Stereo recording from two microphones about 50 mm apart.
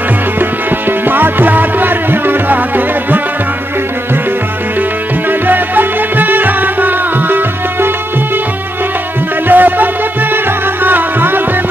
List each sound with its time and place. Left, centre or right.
0.4 s music: right
5.5 s music: right
9.5 s music: right